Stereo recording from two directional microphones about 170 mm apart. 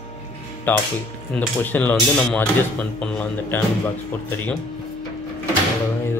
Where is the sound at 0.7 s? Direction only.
10° left (ahead or behind).